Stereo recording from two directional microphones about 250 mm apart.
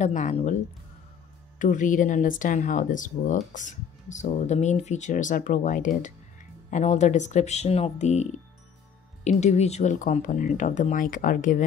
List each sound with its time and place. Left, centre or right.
0.0 s speech: left
1.6 s speech: left